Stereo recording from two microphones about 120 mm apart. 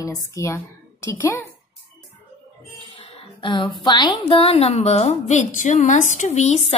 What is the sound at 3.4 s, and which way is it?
A woman's voice, 40° left (ahead or behind).